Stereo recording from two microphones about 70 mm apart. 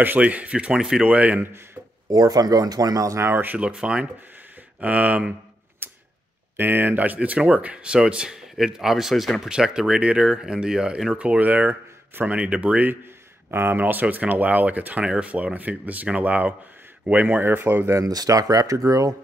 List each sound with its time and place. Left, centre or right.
0.0 s speech: right
2.0 s speech: right
3.2 s speech: right
3.5 s speech: centre
5.8 s mechanisms: right
6.5 s speech: right; by 11.1 s centre
11.1 s speech: centre
13.5 s speech: right
18.0 s speech: right